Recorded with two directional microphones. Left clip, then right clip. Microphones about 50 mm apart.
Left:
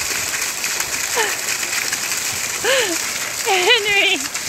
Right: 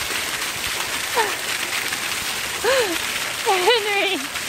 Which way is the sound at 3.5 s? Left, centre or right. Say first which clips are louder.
Left 5 dB; right.